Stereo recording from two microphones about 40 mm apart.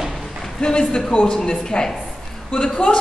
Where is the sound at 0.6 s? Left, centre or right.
Left.